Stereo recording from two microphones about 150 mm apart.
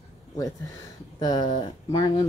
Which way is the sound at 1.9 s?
30° left (ahead or behind).